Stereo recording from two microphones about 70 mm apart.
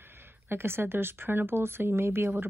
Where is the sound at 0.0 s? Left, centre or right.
Right.